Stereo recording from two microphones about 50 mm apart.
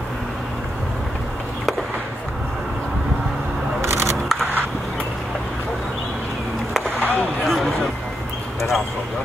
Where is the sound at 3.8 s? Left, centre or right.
Right.